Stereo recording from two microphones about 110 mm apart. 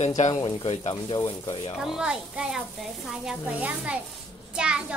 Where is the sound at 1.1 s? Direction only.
45° left (ahead or behind).